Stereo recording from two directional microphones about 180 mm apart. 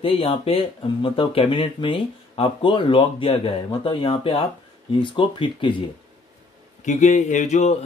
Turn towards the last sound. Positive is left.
turn(degrees=40)  # may be behind; listen again after turning